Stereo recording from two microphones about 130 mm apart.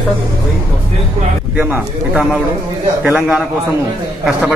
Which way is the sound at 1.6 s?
5° right (ahead or behind).